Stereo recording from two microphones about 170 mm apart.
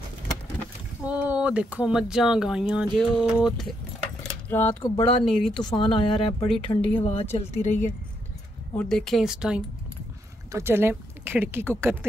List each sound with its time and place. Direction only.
1.0 s speech: 10° right (ahead or behind)
4.2 s a sound: 10° left (ahead or behind)
5.2 s speech: 5° left (ahead or behind)
5.6 s speech: 25° left (ahead or behind)
8.7 s speech: 5° left (ahead or behind); by 12.0 s 15° right (ahead or behind)